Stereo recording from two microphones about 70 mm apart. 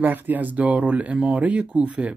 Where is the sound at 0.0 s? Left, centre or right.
Right.